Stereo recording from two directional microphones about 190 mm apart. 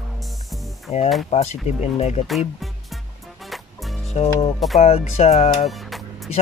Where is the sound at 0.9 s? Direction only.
35° left (ahead or behind).